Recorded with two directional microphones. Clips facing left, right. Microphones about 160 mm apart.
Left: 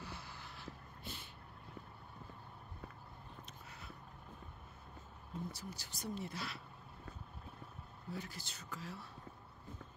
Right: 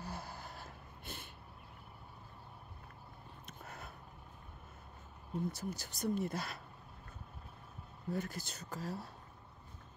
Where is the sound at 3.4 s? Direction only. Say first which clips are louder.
Right 4 dB; 50° right (ahead or behind).